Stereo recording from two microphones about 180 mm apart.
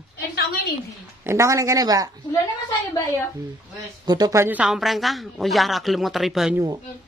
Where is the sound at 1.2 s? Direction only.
15° right (ahead or behind).